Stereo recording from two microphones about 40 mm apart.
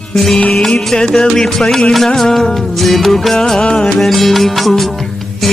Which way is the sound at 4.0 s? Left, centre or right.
Centre.